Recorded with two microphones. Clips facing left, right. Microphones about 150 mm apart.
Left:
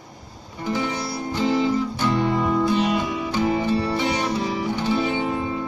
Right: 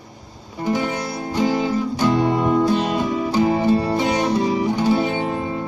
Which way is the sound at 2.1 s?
15° right (ahead or behind).